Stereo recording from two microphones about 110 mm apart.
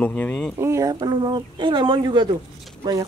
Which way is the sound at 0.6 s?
25° right (ahead or behind).